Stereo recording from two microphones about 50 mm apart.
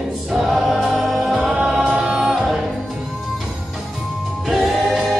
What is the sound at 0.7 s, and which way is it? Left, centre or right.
Music, centre.